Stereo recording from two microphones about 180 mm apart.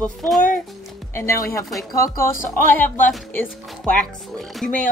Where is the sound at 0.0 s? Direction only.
Centre (ahead or behind).